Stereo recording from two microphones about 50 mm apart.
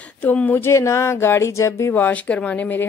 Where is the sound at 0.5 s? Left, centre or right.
Left.